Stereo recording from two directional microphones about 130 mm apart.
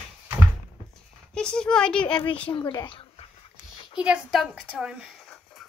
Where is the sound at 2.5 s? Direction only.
35° left (ahead or behind).